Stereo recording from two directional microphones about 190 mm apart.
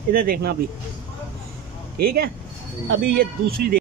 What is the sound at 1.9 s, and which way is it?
Speech, 55° right (ahead or behind).